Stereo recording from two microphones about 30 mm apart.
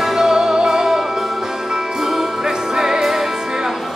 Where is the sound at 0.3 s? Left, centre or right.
Centre.